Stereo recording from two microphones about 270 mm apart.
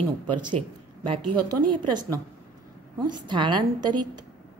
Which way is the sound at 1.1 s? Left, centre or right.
Right.